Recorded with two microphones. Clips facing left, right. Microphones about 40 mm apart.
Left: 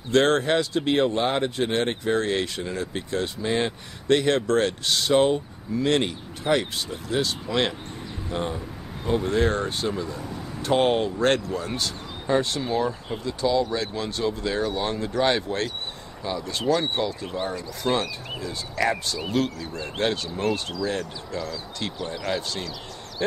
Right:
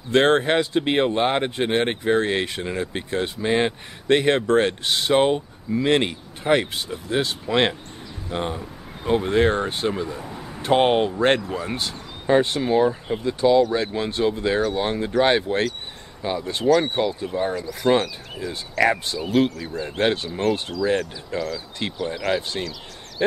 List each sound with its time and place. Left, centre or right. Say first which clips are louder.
0.1 s speech: right 2 dB; right
21.3 s speech: right 5 dB; right
22.1 s speech: right 5 dB; centre